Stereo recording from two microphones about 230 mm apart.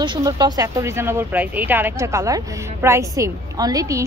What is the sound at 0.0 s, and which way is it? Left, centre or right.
Speech, centre.